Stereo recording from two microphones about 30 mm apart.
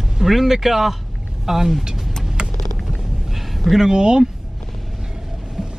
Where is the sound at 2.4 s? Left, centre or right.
Right.